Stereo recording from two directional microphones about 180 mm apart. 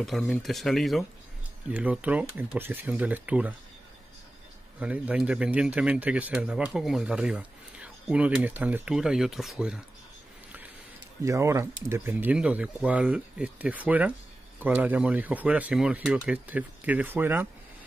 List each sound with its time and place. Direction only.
0.0 s speech: centre (ahead or behind)
4.7 s speech: 10° right (ahead or behind)
11.2 s speech: 15° right (ahead or behind)